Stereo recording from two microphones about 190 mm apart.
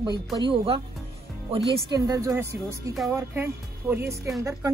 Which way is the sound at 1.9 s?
20° right (ahead or behind).